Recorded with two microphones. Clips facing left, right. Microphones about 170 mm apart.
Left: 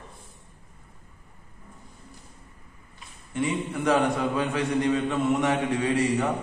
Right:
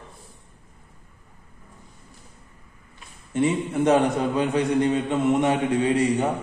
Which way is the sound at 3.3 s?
25° right (ahead or behind).